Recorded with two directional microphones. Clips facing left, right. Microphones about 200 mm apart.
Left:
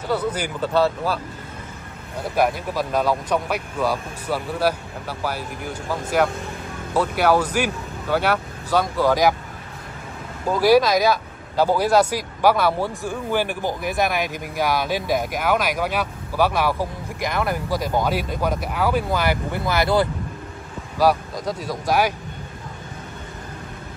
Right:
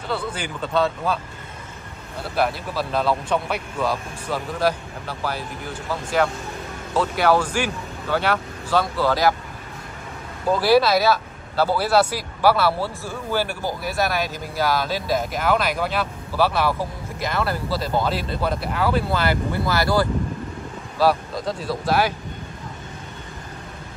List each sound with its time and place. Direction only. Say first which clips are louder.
0.1 s speech: left 4 dB; 10° left (ahead or behind)
2.2 s speech: left 2 dB; 15° left (ahead or behind)
10.5 s speech: left 1 dB; 10° left (ahead or behind)